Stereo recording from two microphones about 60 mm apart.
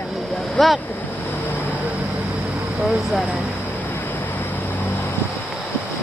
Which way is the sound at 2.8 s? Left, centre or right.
Centre.